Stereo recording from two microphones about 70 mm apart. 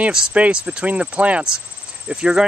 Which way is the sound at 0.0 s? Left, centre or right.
Centre.